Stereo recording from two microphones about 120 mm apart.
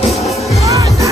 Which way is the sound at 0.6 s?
30° right (ahead or behind).